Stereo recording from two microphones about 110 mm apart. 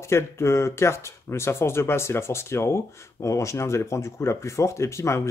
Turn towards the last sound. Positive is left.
turn(degrees=25)  # may be behind; listen again after turning